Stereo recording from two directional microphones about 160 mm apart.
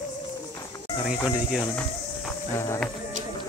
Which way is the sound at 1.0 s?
5° right (ahead or behind).